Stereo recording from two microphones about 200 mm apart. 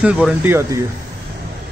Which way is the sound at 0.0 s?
5° right (ahead or behind).